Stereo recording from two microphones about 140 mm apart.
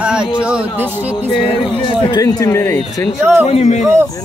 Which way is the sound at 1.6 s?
35° left (ahead or behind).